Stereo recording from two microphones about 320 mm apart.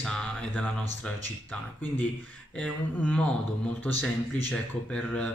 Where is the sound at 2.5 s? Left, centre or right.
Centre.